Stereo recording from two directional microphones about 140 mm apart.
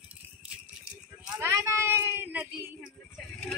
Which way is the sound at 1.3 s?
20° right (ahead or behind).